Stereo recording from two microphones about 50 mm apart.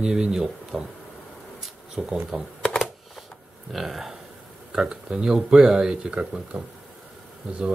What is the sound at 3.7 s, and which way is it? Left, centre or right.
A man's voice, centre.